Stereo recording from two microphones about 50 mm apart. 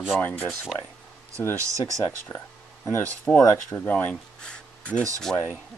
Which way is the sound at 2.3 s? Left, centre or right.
Left.